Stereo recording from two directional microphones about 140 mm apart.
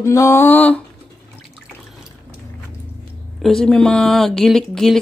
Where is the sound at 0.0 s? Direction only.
20° left (ahead or behind).